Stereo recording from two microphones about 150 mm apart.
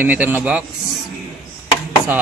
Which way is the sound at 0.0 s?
10° right (ahead or behind).